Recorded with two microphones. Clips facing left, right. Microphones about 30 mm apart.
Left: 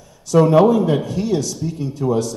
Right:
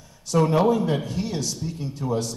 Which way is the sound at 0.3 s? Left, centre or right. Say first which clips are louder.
Left 7 dB; left.